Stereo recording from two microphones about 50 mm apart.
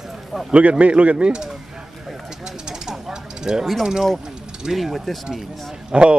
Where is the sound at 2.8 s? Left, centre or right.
Centre.